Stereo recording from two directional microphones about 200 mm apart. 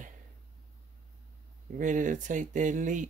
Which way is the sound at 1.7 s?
40° right (ahead or behind).